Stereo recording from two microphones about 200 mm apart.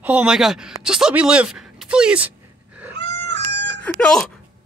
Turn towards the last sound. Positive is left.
turn(degrees=5)  # may be behind; listen again after turning